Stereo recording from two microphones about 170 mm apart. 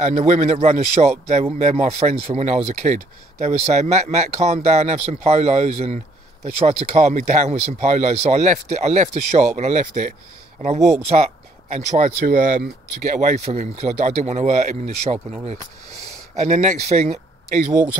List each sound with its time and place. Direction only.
0.0 s speech: 45° right (ahead or behind)
13.1 s speech: 45° right (ahead or behind)